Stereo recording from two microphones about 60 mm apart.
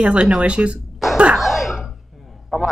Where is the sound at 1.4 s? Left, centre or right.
Centre.